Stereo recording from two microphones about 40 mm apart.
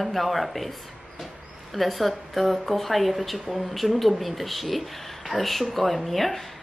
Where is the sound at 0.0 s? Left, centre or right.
Centre.